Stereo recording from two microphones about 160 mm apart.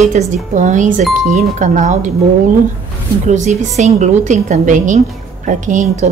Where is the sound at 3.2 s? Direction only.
45° right (ahead or behind).